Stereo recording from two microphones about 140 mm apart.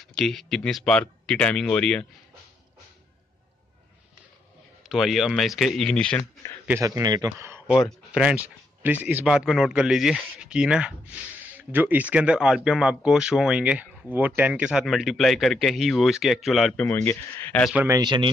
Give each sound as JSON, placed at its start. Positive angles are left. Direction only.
{"t": 0.0, "sound": "speech", "side_deg": 5}
{"t": 4.8, "sound": "speech", "side_deg": 0}
{"t": 6.7, "sound": "a man's voice", "side_deg": -20}
{"t": 7.8, "sound": "speech", "side_deg": -5}
{"t": 16.8, "sound": "speech", "side_deg": 15}
{"t": 17.8, "sound": "speech", "side_deg": -25}